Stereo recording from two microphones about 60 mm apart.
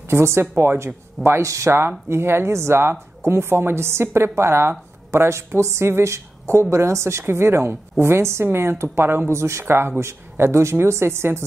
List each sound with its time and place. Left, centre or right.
0.1 s a woman's voice: right
1.4 s speech: right
1.7 s a woman's voice: right
9.3 s a woman's voice: right